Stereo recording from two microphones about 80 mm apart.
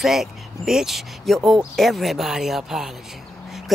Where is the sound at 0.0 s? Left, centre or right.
Centre.